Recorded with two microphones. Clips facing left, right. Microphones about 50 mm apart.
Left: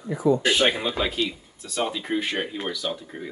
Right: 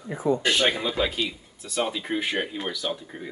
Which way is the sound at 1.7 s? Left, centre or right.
Centre.